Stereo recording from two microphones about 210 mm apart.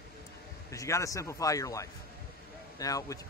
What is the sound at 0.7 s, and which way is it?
A man's voice, 15° left (ahead or behind).